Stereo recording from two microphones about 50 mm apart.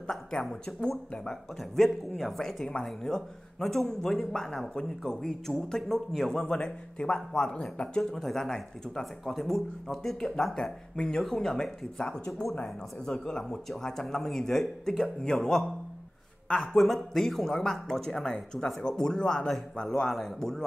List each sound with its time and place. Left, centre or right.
0.1 s speech: centre
7.5 s speech: centre
8.0 s speech: centre